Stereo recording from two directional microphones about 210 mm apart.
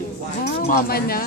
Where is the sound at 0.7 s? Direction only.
45° left (ahead or behind).